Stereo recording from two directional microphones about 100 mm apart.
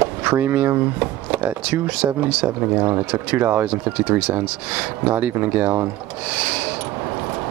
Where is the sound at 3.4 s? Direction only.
20° right (ahead or behind).